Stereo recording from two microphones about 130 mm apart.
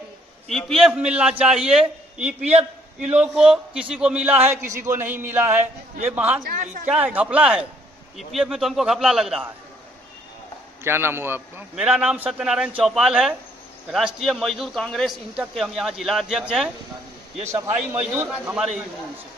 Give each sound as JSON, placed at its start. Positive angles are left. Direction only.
{"t": 0.5, "sound": "a man's voice", "side_deg": 5}
{"t": 6.4, "sound": "speech", "side_deg": -90}
{"t": 6.9, "sound": "a man's voice", "side_deg": -10}
{"t": 10.8, "sound": "a man's voice", "side_deg": -20}
{"t": 11.7, "sound": "a man's voice", "side_deg": -5}
{"t": 17.5, "sound": "a man's voice", "side_deg": -20}